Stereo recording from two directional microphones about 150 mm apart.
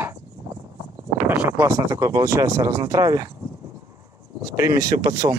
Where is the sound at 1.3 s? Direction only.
15° right (ahead or behind).